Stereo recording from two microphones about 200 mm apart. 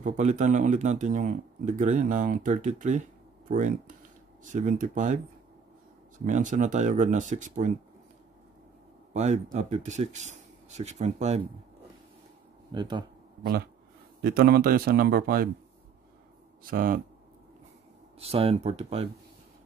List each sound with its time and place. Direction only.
0.0 s speech: 35° right (ahead or behind)
9.1 s speech: 35° right (ahead or behind)
12.7 s speech: 25° right (ahead or behind)
13.4 s speech: 50° right (ahead or behind)
16.6 s speech: 45° right (ahead or behind)
18.2 s speech: 30° right (ahead or behind)